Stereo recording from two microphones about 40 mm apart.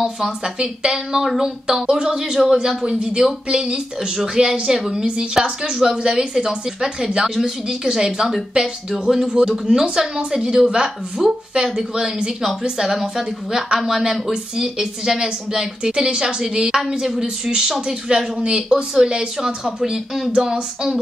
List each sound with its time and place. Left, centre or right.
0.6 s speech: centre
3.4 s speech: right; by 5.0 s centre
5.0 s speech: right
5.3 s speech: centre
14.3 s speech: centre